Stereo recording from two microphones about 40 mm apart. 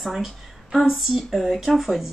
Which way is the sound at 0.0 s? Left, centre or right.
Centre.